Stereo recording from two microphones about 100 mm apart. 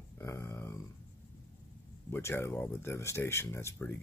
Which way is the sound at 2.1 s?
25° left (ahead or behind).